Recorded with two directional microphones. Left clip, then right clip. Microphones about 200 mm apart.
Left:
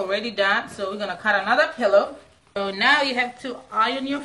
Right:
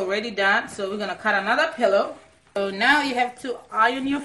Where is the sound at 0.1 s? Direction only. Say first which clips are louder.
Even; 35° right (ahead or behind).